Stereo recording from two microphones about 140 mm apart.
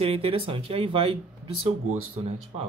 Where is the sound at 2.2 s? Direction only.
45° right (ahead or behind).